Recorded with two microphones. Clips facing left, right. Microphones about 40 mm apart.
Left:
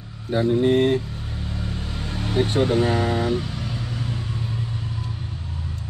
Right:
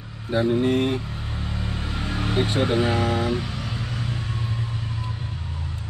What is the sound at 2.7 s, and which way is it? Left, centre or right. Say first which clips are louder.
Speech: left 1 dB; centre.